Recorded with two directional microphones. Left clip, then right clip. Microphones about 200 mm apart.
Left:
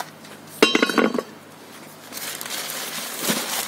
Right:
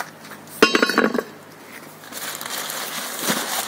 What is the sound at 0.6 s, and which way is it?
Chink, 20° right (ahead or behind).